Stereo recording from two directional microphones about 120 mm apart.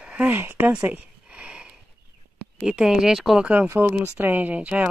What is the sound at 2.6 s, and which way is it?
Speech, 5° right (ahead or behind).